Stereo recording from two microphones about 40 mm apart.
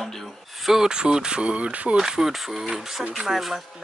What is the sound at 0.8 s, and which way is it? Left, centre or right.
Speech, right.